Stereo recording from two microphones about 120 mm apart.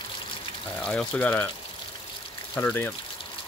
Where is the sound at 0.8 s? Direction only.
10° left (ahead or behind).